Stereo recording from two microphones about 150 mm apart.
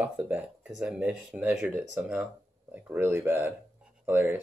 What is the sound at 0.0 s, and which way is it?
Speech, 10° right (ahead or behind).